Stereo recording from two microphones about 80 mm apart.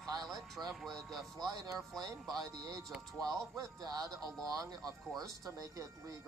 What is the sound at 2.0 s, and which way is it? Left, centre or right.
Speech, right.